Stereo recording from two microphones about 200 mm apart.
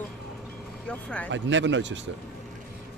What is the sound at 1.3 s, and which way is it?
Speech, 65° right (ahead or behind).